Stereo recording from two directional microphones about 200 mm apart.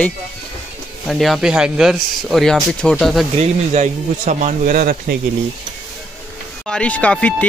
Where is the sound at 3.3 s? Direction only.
35° right (ahead or behind).